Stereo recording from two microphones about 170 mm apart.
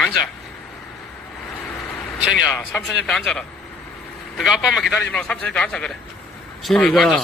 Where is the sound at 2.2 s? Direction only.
5° right (ahead or behind).